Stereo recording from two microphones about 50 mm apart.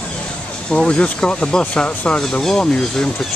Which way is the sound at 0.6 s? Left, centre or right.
Centre.